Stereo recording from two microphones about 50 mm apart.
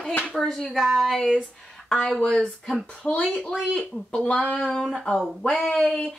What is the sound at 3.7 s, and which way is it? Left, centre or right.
Speech, centre.